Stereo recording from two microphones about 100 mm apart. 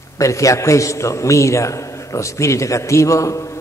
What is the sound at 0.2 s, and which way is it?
A man's voice, 30° left (ahead or behind).